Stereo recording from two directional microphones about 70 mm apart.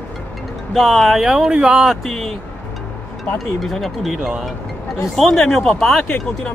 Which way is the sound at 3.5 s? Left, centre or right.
Centre.